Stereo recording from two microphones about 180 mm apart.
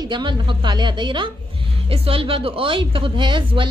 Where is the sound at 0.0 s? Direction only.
25° right (ahead or behind).